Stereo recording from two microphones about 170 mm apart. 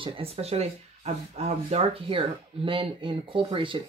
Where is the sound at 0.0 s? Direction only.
35° right (ahead or behind).